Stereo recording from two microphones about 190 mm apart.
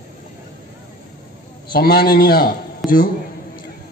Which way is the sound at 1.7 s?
55° left (ahead or behind).